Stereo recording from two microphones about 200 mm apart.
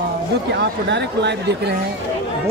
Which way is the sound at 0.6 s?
60° right (ahead or behind).